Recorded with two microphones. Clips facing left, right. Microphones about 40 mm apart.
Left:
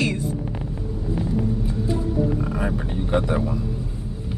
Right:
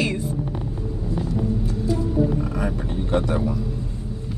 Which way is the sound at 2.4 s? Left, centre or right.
Centre.